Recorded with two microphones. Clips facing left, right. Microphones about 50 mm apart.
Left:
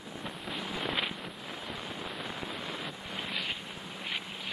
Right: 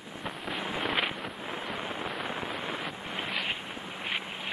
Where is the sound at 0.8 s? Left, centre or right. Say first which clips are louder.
Right 4 dB; centre.